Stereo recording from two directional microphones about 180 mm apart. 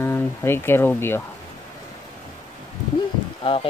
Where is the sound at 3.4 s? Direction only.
30° left (ahead or behind).